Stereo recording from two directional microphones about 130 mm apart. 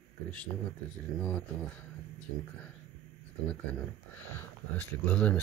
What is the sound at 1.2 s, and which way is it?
Speech, 10° left (ahead or behind).